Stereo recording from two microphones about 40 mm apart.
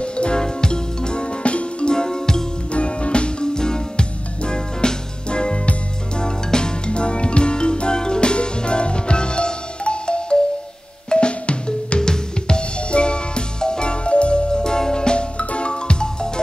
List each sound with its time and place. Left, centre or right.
0.0 s music: left
2.7 s music: left